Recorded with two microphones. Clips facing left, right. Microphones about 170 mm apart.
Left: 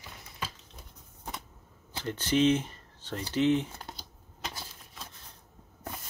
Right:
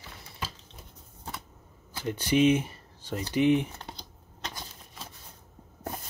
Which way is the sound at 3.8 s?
5° left (ahead or behind).